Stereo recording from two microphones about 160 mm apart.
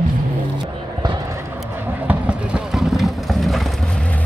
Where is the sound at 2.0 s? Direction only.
5° right (ahead or behind).